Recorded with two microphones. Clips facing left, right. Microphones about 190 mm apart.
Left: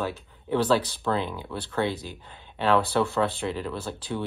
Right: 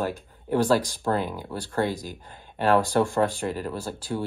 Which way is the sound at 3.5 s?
40° right (ahead or behind).